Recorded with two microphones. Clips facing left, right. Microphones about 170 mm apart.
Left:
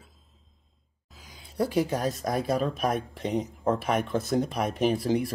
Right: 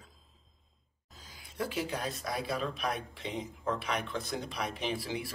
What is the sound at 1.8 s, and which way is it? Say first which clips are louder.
Speech: left 8 dB; 45° left (ahead or behind).